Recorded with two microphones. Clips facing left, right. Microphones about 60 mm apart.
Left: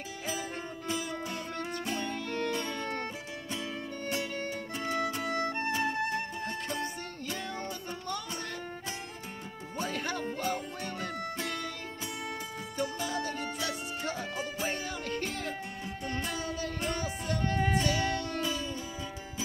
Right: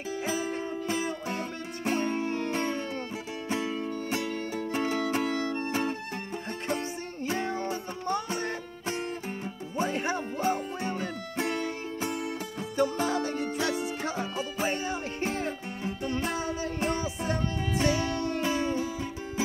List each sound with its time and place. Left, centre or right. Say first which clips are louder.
0.3 s music: right 4 dB; right
2.5 s music: right 3 dB; right
6.8 s music: right 2 dB; right
9.8 s music: right 5 dB; right